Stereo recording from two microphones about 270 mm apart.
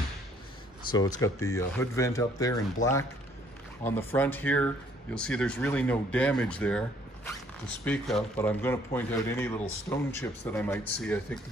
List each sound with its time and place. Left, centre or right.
1.2 s speech: centre
7.8 s speech: centre